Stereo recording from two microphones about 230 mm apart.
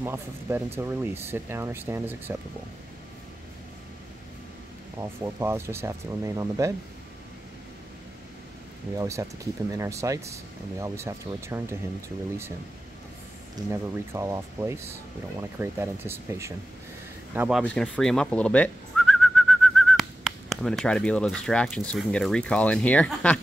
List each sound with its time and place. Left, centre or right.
0.0 s speech: centre
4.9 s speech: centre
8.9 s speech: centre
13.7 s speech: centre